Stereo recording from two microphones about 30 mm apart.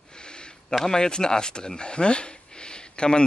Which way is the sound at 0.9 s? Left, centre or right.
Left.